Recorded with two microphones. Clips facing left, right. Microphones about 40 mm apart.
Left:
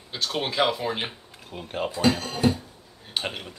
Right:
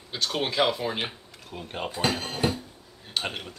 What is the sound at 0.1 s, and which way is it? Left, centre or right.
Speech, centre.